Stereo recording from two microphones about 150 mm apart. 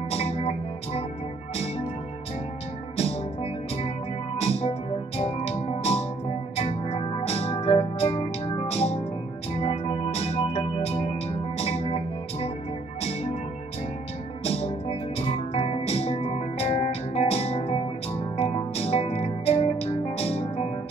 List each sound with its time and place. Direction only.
0.1 s music: 40° left (ahead or behind)
4.4 s music: 40° left (ahead or behind)
14.4 s music: 40° left (ahead or behind)